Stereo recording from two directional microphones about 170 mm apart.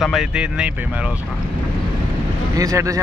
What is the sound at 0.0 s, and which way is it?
Speech, centre (ahead or behind).